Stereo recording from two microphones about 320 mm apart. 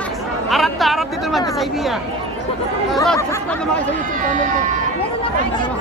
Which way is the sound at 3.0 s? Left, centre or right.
Centre.